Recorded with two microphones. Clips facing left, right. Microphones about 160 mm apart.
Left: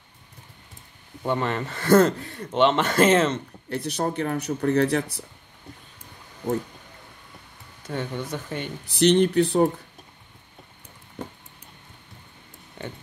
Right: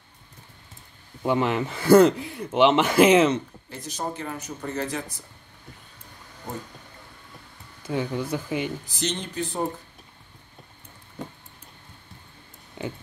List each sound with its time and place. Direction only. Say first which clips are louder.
1.2 s speech: right 2 dB; 10° right (ahead or behind)
3.6 s speech: left 6 dB; 65° left (ahead or behind)
7.8 s speech: right 3 dB; 5° right (ahead or behind)
8.8 s speech: left 12 dB; 65° left (ahead or behind)